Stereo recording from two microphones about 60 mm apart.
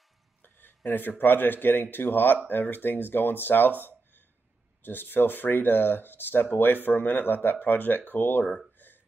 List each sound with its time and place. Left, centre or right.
0.4 s speech: left
4.8 s speech: left
8.7 s a sound: left